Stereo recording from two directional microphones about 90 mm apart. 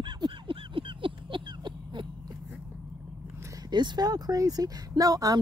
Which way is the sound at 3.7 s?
55° right (ahead or behind).